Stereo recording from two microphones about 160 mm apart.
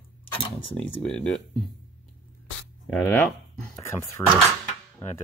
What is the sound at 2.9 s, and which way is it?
Speech, 10° left (ahead or behind).